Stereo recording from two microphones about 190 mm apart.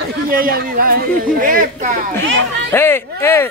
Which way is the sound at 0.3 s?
50° right (ahead or behind).